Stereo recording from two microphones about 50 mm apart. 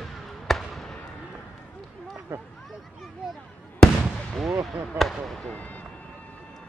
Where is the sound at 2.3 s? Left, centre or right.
Right.